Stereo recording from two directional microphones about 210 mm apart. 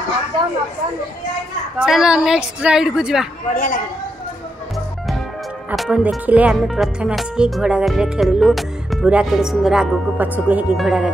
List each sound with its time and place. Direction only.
1.8 s speech: 5° right (ahead or behind)
3.5 s a man's voice: 40° left (ahead or behind)
5.7 s speech: 5° right (ahead or behind)